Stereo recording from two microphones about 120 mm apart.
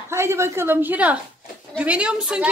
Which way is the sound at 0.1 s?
20° right (ahead or behind).